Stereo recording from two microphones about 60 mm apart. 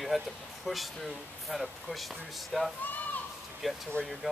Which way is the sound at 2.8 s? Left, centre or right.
Left.